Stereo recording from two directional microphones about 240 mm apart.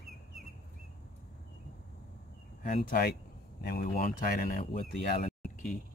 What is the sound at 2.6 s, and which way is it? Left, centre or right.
Speech, left.